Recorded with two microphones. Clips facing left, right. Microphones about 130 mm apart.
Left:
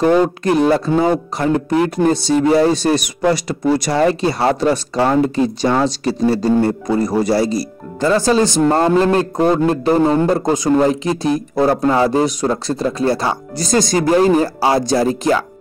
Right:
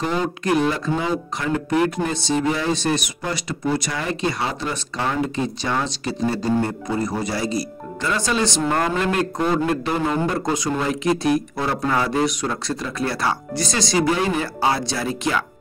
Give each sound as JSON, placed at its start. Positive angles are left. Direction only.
{"t": 0.0, "sound": "speech", "side_deg": 50}
{"t": 0.4, "sound": "speech", "side_deg": 35}
{"t": 10.9, "sound": "speech", "side_deg": 30}
{"t": 11.5, "sound": "speech", "side_deg": 45}
{"t": 11.9, "sound": "speech", "side_deg": 30}
{"t": 13.6, "sound": "speech", "side_deg": 45}